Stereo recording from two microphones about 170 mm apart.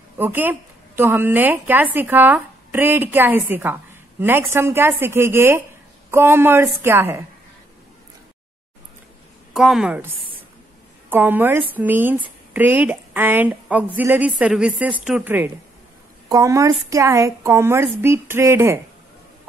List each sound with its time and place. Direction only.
0.2 s speech: 10° right (ahead or behind)
9.5 s a woman's voice: centre (ahead or behind)